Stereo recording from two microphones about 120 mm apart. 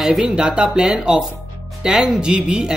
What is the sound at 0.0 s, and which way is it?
Speech, 5° right (ahead or behind).